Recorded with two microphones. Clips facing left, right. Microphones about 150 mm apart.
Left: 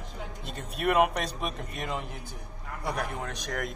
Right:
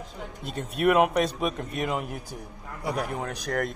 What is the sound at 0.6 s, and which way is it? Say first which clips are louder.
A man's voice: right 3 dB; centre (ahead or behind).